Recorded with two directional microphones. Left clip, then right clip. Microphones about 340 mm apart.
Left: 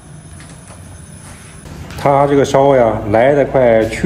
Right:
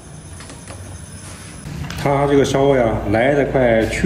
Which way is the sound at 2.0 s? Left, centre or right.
Centre.